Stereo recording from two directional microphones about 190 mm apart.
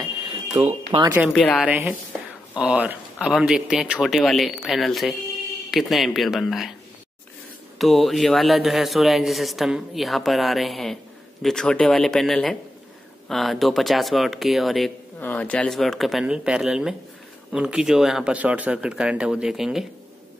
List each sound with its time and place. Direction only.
0.0 s a sound: 25° right (ahead or behind)
1.1 s speech: 5° right (ahead or behind)
1.4 s a woman's voice: 10° left (ahead or behind)
1.7 s speech: 10° right (ahead or behind)
7.8 s speech: centre (ahead or behind)